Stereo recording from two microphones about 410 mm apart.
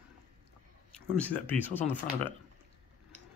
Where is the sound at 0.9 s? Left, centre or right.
Centre.